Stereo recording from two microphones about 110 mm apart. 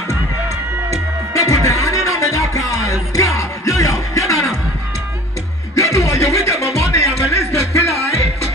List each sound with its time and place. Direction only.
0.8 s music: 30° left (ahead or behind)
5.8 s music: 25° left (ahead or behind)